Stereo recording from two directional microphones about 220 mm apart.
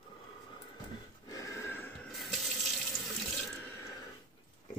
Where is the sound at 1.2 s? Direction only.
15° left (ahead or behind); by 2.8 s centre (ahead or behind).